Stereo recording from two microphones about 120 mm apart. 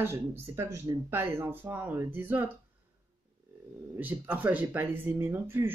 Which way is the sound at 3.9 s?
15° right (ahead or behind).